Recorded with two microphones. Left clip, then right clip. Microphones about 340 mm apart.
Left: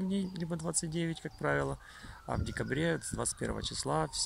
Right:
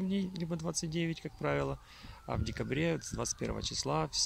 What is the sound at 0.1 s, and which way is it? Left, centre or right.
Speech, centre.